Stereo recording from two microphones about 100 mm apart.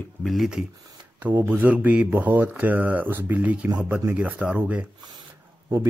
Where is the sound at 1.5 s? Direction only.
15° right (ahead or behind).